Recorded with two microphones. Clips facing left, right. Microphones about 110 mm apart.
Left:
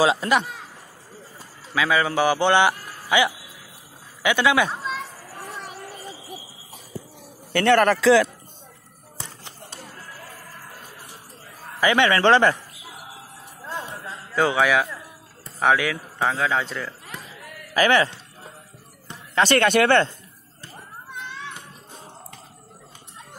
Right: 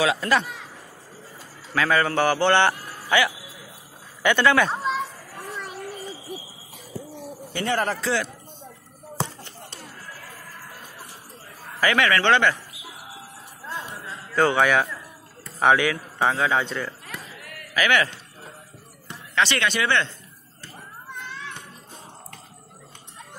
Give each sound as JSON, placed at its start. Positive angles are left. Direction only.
{"t": 0.0, "sound": "a man's voice", "side_deg": 20}
{"t": 1.7, "sound": "speech", "side_deg": 5}
{"t": 7.5, "sound": "a man's voice", "side_deg": 70}
{"t": 11.8, "sound": "a man's voice", "side_deg": 20}
{"t": 12.2, "sound": "speech", "side_deg": 35}
{"t": 14.3, "sound": "speech", "side_deg": 5}
{"t": 17.7, "sound": "speech", "side_deg": 30}
{"t": 19.3, "sound": "speech", "side_deg": 45}